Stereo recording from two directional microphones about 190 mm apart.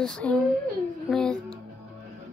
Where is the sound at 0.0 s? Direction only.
5° left (ahead or behind).